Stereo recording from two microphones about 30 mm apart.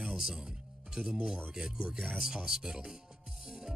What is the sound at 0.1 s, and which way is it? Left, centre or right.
Speech, centre.